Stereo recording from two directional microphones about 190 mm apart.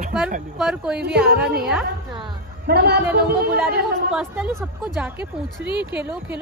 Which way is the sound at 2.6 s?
55° right (ahead or behind).